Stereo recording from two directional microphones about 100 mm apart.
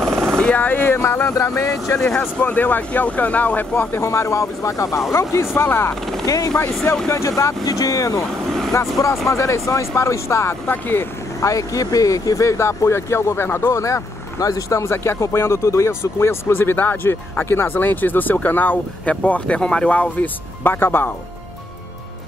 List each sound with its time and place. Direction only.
0.3 s speech: 10° left (ahead or behind); by 2.0 s 30° left (ahead or behind)
2.0 s speech: 10° left (ahead or behind); by 5.9 s 25° left (ahead or behind)
6.2 s speech: 35° left (ahead or behind)
8.2 s vehicle: 5° left (ahead or behind)
9.0 s speech: 35° left (ahead or behind)
11.4 s speech: 35° left (ahead or behind)